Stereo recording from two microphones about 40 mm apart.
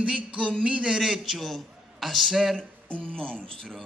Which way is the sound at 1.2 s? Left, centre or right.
Centre.